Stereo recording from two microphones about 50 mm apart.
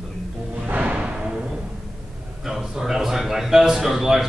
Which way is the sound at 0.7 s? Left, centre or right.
Right.